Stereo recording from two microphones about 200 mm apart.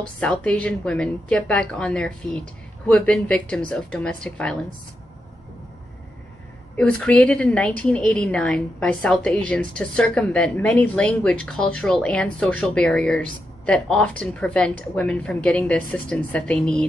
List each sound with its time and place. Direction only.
0.2 s a woman's voice: 5° left (ahead or behind)
6.8 s a woman's voice: 5° left (ahead or behind)